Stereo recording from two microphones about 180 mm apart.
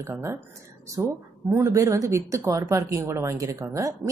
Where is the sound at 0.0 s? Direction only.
10° right (ahead or behind).